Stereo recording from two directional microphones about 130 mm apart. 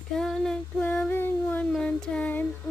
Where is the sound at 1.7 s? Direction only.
5° left (ahead or behind).